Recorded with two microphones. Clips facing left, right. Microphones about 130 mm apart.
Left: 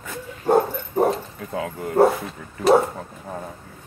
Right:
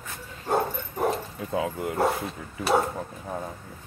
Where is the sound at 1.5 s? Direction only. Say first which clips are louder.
Right 1 dB; 15° right (ahead or behind).